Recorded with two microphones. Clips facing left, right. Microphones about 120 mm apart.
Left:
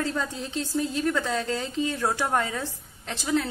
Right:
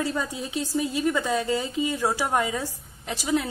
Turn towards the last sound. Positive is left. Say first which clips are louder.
# right 1 dB
turn(degrees=-10)  # may be behind; listen again after turning